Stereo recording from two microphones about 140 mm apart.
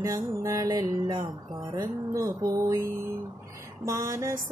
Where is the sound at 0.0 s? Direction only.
25° right (ahead or behind).